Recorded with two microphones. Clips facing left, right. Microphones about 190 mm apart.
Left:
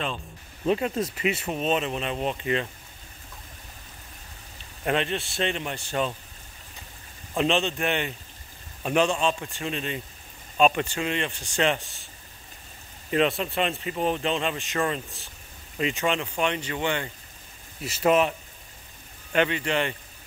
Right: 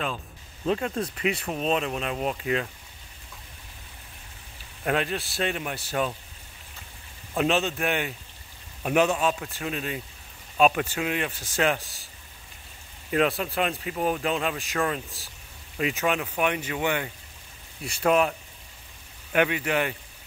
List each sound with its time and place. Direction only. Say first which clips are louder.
0.7 s speech: left 2 dB; 5° left (ahead or behind)
4.8 s speech: left 1 dB; 5° right (ahead or behind)
7.3 s speech: even; 5° right (ahead or behind)
13.1 s speech: even; 5° right (ahead or behind)
19.3 s speech: even; 10° right (ahead or behind)